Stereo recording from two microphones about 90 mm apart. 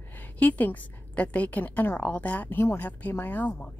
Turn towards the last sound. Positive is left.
turn(degrees=20)  # may be behind; listen again after turning